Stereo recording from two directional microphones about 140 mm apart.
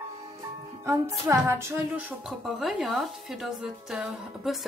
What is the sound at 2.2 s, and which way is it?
A woman's voice, centre (ahead or behind).